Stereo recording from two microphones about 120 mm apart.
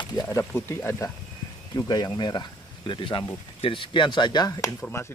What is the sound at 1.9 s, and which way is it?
Speech, 35° left (ahead or behind).